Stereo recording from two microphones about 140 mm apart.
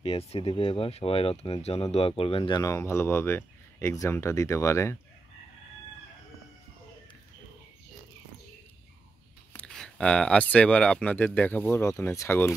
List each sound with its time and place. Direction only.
0.0 s speech: 45° left (ahead or behind)
2.6 s speech: 20° left (ahead or behind)
9.6 s speech: 5° left (ahead or behind)